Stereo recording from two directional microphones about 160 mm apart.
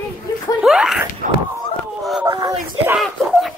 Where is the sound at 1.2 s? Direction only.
55° right (ahead or behind).